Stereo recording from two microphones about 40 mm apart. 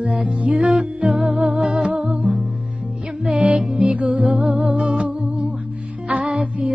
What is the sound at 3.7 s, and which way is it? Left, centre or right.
Music, right.